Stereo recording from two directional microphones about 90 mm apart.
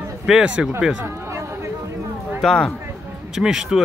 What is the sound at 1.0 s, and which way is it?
Chatter, 35° right (ahead or behind).